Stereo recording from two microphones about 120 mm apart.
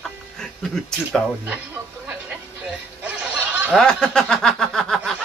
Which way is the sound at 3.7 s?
5° left (ahead or behind).